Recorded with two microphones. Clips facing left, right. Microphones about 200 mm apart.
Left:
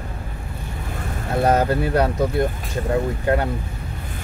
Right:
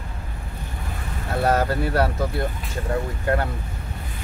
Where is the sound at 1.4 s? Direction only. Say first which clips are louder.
Left 3 dB; 20° left (ahead or behind).